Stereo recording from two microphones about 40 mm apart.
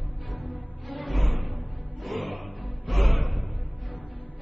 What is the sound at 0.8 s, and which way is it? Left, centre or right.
Music, centre.